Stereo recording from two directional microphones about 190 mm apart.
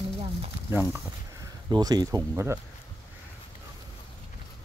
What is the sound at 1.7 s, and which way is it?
Speech, 20° right (ahead or behind).